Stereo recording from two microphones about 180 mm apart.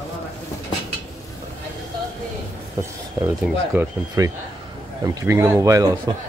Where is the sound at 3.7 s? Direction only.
15° right (ahead or behind).